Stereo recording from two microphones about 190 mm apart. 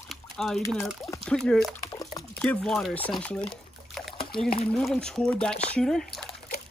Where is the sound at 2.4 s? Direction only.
5° left (ahead or behind).